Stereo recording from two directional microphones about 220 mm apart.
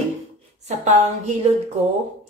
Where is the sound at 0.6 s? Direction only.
30° right (ahead or behind).